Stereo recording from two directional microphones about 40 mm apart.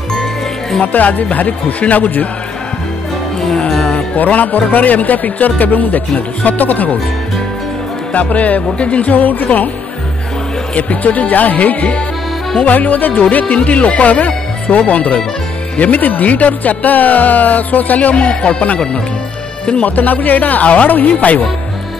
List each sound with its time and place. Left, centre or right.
0.1 s music: centre
0.9 s speech: left
3.3 s music: centre
4.2 s speech: left
8.1 s speech: left
10.7 s speech: left
19.8 s speech: left